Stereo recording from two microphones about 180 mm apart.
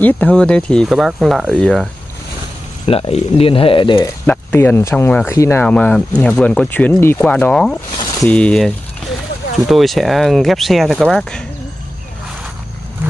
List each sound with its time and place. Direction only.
0.0 s speech: 10° left (ahead or behind)
2.9 s speech: 35° left (ahead or behind)
4.3 s speech: 10° left (ahead or behind)